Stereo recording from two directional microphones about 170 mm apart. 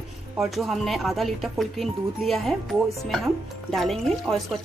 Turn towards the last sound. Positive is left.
turn(degrees=0)  # may be behind; listen again after turning